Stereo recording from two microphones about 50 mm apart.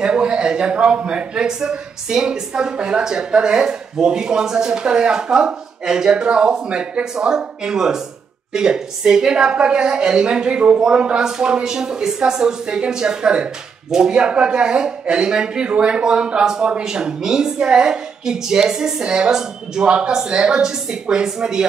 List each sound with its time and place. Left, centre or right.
0.0 s a man's voice: right